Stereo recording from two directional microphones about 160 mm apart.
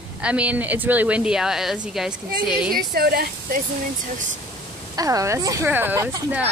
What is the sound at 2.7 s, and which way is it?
Speech, 70° right (ahead or behind).